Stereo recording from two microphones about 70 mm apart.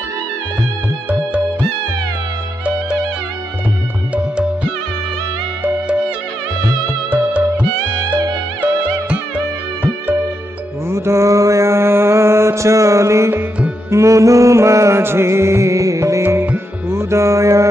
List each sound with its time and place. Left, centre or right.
5.6 s music: centre
10.9 s mantra: right
13.8 s music: right
16.2 s music: right